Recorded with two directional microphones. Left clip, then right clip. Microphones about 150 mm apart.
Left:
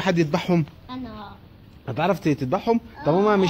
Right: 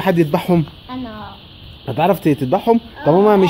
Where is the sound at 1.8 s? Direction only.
30° right (ahead or behind).